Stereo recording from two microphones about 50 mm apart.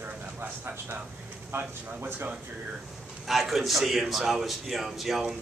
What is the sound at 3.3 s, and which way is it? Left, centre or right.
A man's voice, centre.